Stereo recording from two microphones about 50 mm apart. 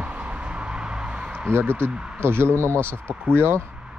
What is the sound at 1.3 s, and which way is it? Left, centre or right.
Speech, right.